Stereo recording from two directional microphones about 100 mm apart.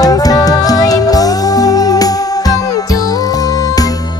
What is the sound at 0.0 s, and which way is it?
Music, 40° left (ahead or behind).